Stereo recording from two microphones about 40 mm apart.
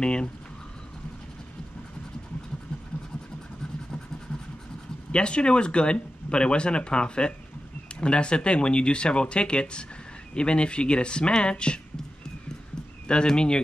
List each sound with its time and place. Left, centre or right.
0.0 s speech: left
5.1 s speech: left
13.1 s speech: left